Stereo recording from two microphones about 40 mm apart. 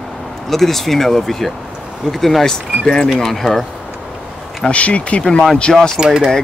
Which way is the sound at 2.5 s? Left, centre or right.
Centre.